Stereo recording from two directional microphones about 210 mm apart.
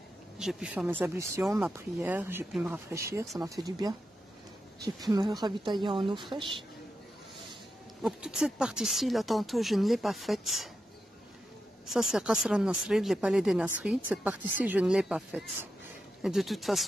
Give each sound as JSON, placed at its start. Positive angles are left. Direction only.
{"t": 0.4, "sound": "speech", "side_deg": 0}
{"t": 8.0, "sound": "speech", "side_deg": -5}
{"t": 11.8, "sound": "speech", "side_deg": 0}